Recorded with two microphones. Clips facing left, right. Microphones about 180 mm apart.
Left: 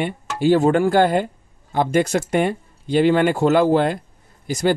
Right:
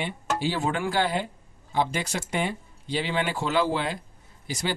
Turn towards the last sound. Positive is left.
turn(degrees=45)  # may be behind; listen again after turning